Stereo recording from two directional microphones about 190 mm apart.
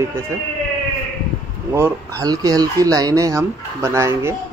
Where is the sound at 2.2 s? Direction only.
20° right (ahead or behind).